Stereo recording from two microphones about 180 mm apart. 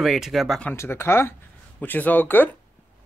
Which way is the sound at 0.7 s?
15° left (ahead or behind).